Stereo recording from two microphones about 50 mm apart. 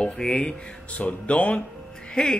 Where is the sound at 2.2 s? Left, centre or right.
Centre.